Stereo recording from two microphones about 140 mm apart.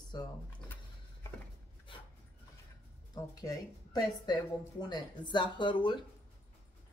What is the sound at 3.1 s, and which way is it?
A woman's voice, 25° left (ahead or behind).